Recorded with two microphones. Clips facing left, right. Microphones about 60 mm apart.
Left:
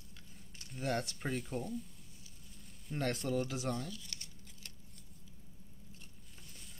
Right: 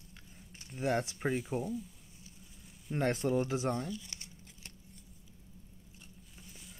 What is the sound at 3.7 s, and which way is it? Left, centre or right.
Crumpling, right.